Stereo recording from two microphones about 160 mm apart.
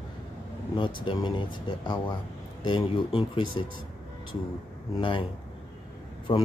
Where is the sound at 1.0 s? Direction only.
30° left (ahead or behind).